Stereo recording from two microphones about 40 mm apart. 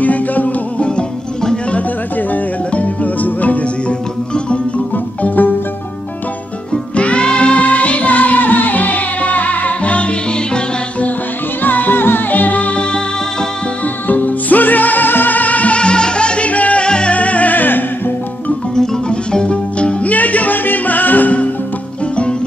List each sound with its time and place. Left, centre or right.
0.0 s music: left
0.7 s music: left
2.7 s music: left
4.9 s music: left
7.0 s music: left
11.6 s music: left
14.0 s music: left
15.8 s music: left
16.8 s music: left
17.1 s music: left
18.8 s music: left
20.1 s music: left